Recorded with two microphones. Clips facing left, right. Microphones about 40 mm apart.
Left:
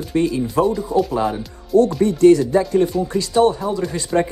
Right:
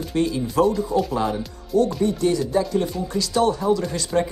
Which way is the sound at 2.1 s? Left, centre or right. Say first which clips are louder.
Left 9 dB; left.